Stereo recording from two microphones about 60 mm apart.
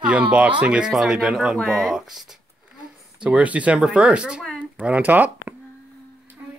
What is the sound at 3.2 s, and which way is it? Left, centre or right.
Speech, right.